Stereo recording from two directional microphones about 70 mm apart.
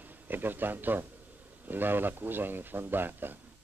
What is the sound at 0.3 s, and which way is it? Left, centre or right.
Speech, right.